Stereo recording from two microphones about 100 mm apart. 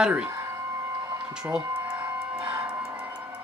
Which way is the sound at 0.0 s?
10° right (ahead or behind).